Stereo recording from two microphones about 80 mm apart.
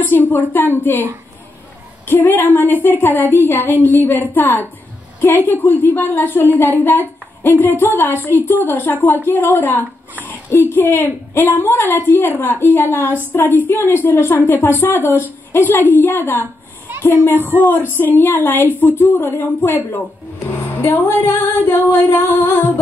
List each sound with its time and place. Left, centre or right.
0.0 s a woman's voice: left
2.0 s a woman's voice: left